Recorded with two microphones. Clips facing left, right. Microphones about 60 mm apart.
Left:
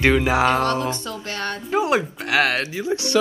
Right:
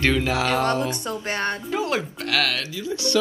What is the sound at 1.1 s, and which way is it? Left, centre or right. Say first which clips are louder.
Speech: right 2 dB; right.